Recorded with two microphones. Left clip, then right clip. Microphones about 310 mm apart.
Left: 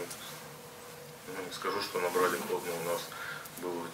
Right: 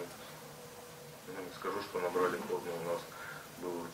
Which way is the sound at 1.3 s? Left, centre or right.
Centre.